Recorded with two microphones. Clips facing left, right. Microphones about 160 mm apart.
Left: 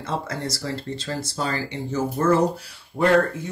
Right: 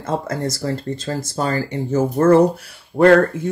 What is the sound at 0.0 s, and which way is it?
Speech, 45° right (ahead or behind).